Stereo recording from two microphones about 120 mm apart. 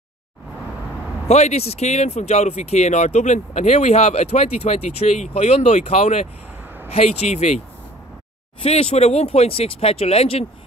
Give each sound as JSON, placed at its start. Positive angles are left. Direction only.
{"t": 1.3, "sound": "speech", "side_deg": 65}
{"t": 8.6, "sound": "speech", "side_deg": 55}